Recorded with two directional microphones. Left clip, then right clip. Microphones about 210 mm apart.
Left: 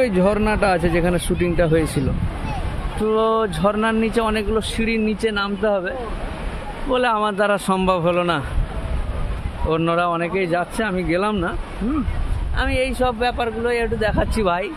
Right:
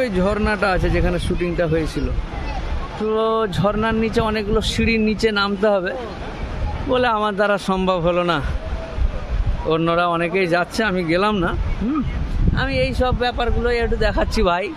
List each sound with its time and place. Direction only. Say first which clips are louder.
0.0 s speech: left 2 dB; 10° left (ahead or behind)
3.1 s a man's voice: left 1 dB; 5° left (ahead or behind)
4.6 s speech: right 2 dB; 15° right (ahead or behind)
9.7 s speech: right 1 dB; 10° right (ahead or behind)
12.5 s a man's voice: even; 5° right (ahead or behind)